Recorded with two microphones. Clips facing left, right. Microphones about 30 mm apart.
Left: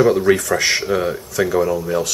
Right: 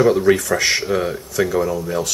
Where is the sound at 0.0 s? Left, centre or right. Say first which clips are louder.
Even; centre.